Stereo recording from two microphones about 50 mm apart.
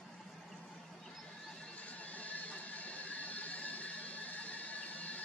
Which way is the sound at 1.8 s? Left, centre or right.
Left.